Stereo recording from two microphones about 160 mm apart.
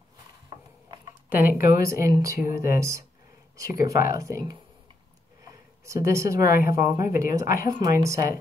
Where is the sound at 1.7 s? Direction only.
20° right (ahead or behind).